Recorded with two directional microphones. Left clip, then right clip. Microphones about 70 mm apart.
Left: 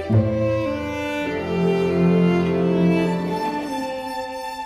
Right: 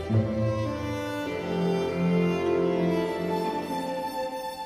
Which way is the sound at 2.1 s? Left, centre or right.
Right.